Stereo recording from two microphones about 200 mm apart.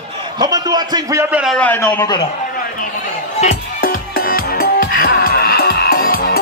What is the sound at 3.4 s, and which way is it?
Music, 45° left (ahead or behind).